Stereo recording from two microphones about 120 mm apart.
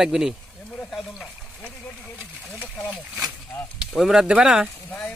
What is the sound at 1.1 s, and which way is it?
Speech, 10° left (ahead or behind).